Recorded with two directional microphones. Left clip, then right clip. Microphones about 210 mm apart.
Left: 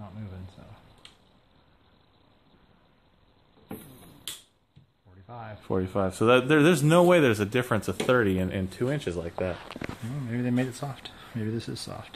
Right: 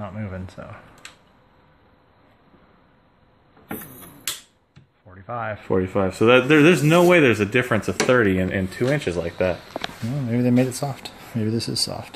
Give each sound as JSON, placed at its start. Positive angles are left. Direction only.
{"t": 0.0, "sound": "a sound", "side_deg": -40}
{"t": 5.1, "sound": "speech", "side_deg": -40}
{"t": 5.7, "sound": "speech", "side_deg": 5}
{"t": 10.3, "sound": "speech", "side_deg": -30}